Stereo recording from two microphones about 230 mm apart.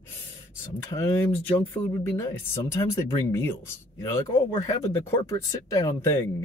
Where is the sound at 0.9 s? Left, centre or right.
Centre.